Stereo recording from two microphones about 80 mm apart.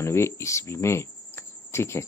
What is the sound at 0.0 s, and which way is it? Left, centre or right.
Speech, left.